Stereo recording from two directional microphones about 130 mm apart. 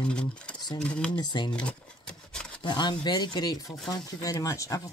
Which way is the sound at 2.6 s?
35° left (ahead or behind).